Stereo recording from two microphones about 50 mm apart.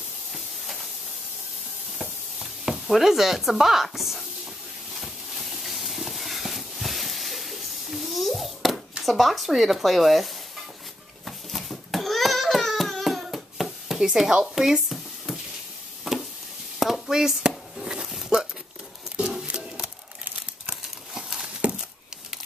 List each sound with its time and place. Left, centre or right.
2.6 s speech: centre
4.9 s a sound: centre
9.0 s speech: centre
11.2 s babbling: centre
16.1 s a sound: centre
16.8 s speech: centre
17.8 s dog: centre
19.4 s a sound: right
20.7 s crumpling: centre